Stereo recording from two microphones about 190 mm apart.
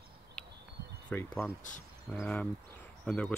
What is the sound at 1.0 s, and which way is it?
Speech, 10° left (ahead or behind).